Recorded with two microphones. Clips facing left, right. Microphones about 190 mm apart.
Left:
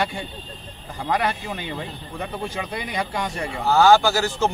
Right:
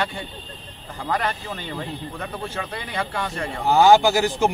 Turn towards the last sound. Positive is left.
turn(degrees=-15)  # may be behind; listen again after turning